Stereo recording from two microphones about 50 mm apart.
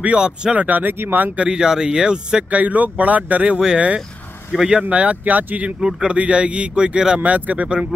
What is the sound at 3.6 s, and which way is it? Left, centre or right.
Speech, right.